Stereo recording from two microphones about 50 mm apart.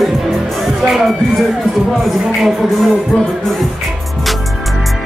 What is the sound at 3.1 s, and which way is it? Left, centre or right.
Music, left.